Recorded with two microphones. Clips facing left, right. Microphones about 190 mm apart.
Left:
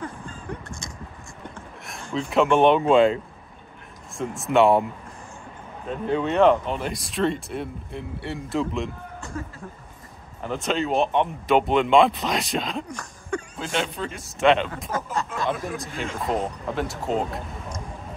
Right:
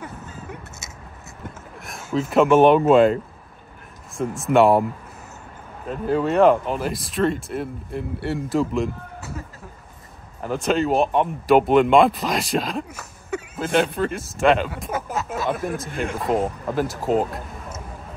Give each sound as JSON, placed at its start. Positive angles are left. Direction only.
{"t": 0.0, "sound": "a sound", "side_deg": -5}
{"t": 4.1, "sound": "speech", "side_deg": 0}
{"t": 5.9, "sound": "speech", "side_deg": -5}
{"t": 10.4, "sound": "speech", "side_deg": -5}
{"t": 13.6, "sound": "speech", "side_deg": -55}
{"t": 14.1, "sound": "speech", "side_deg": 0}
{"t": 15.1, "sound": "a sound", "side_deg": -5}
{"t": 15.5, "sound": "speech", "side_deg": -55}
{"t": 16.3, "sound": "speech", "side_deg": -5}